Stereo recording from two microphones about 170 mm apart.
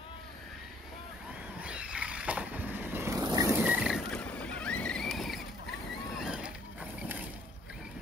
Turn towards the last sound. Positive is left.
turn(degrees=-10)  # may be behind; listen again after turning